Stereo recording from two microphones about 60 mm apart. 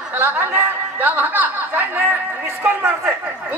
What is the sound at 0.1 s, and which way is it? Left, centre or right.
Speech, right.